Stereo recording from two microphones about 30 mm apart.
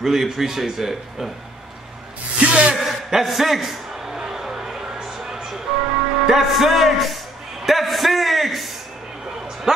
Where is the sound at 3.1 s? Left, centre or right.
Centre.